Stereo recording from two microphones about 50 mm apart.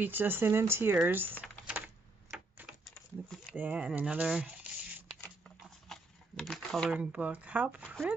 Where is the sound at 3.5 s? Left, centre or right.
Right; by 4.5 s centre.